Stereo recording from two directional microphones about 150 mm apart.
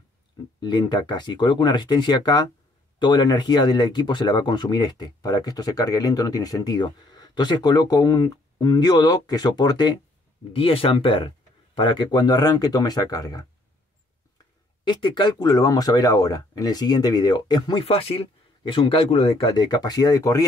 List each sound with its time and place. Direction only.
0.6 s speech: 30° left (ahead or behind)
10.5 s speech: 40° left (ahead or behind)
14.9 s speech: 30° left (ahead or behind)
19.5 s speech: 30° left (ahead or behind)